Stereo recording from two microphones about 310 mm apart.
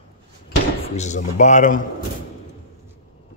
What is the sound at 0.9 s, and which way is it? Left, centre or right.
Speech, left.